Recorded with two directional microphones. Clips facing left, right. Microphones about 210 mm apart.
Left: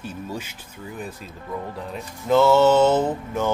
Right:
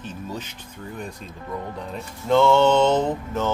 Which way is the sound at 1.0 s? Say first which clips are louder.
Left 1 dB; 5° left (ahead or behind).